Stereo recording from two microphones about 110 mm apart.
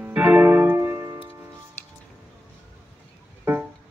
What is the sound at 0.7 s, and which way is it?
Music, 25° right (ahead or behind).